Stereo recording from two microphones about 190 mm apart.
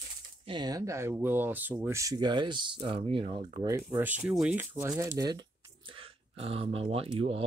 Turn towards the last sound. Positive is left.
turn(degrees=-30)  # may be behind; listen again after turning